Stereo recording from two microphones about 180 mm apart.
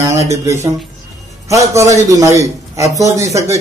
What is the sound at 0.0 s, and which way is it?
A man's voice, 15° right (ahead or behind).